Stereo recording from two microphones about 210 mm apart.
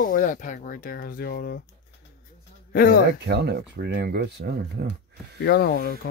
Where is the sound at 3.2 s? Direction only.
55° right (ahead or behind).